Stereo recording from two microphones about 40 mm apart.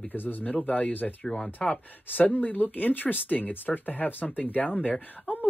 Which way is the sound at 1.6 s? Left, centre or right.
Centre.